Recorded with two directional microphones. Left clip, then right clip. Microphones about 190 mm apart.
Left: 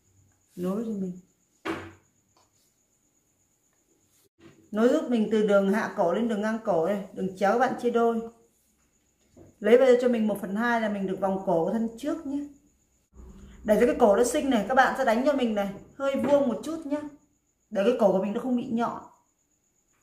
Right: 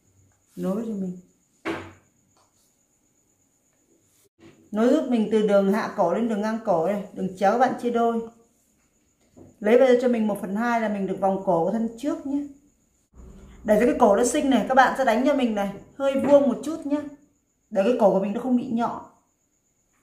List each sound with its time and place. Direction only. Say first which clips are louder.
0.6 s speech: right 3 dB; centre (ahead or behind)
4.6 s a man's voice: right 2 dB; 10° left (ahead or behind)
9.6 s a man's voice: right 2 dB; 10° left (ahead or behind)
13.7 s a man's voice: right 2 dB; 10° left (ahead or behind)
17.7 s a man's voice: right 3 dB; 15° left (ahead or behind)